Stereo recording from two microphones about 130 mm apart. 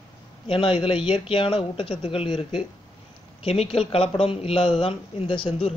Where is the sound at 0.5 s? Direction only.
40° left (ahead or behind).